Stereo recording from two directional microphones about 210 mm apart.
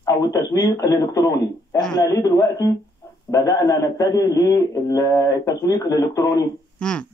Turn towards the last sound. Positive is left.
turn(degrees=5)  # may be behind; listen again after turning